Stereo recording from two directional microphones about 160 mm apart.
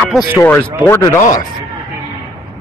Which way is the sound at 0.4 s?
15° left (ahead or behind).